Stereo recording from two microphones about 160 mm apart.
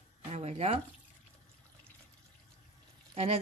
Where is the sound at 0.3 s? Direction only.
40° right (ahead or behind).